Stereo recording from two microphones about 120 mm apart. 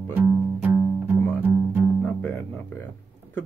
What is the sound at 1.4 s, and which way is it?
Music, 15° right (ahead or behind).